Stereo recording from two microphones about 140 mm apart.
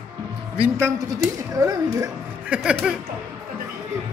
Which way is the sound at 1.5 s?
25° right (ahead or behind).